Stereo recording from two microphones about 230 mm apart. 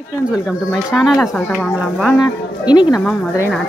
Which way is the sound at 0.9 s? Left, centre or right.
Centre.